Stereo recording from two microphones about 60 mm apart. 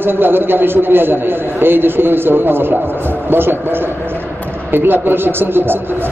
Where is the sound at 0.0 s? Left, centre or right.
Right.